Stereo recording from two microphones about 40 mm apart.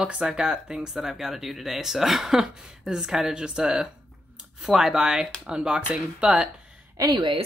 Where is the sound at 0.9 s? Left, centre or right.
Centre.